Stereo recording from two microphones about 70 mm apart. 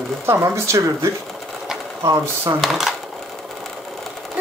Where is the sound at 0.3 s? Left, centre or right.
Right.